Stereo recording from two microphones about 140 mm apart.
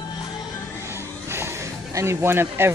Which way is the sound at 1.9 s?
20° right (ahead or behind).